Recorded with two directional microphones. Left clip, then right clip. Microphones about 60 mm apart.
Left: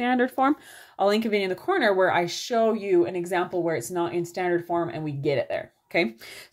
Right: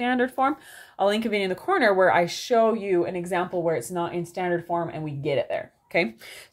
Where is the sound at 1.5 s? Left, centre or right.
Right.